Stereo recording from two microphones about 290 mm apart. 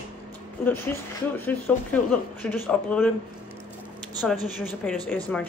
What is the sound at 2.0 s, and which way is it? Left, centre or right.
A woman's voice, centre.